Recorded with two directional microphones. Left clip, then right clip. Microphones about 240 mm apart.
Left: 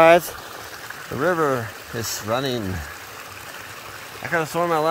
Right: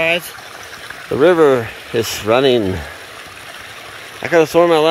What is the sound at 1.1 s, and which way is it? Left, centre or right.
Speech, right.